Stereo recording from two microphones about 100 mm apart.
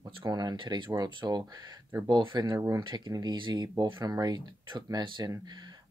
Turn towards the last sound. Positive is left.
turn(degrees=-45)  # may be behind; listen again after turning